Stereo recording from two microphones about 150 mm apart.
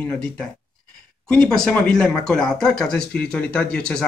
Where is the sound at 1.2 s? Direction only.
5° left (ahead or behind).